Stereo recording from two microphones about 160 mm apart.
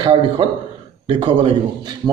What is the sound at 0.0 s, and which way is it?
A man's voice, 30° right (ahead or behind).